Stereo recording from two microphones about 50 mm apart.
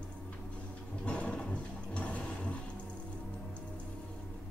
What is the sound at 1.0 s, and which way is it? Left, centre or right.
Toilet flush, left.